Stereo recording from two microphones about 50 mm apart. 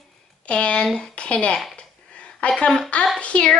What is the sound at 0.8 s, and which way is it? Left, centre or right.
Speech, centre.